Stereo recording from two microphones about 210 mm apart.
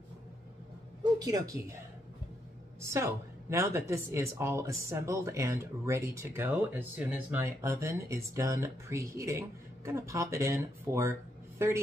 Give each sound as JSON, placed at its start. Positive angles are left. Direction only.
{"t": 1.2, "sound": "a woman's voice", "side_deg": -15}
{"t": 2.8, "sound": "a woman's voice", "side_deg": -15}